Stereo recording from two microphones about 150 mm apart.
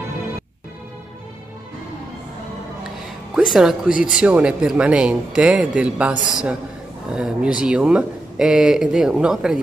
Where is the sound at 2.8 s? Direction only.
Centre (ahead or behind).